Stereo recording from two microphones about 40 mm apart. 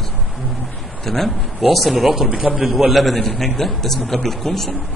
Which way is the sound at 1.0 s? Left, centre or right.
Centre.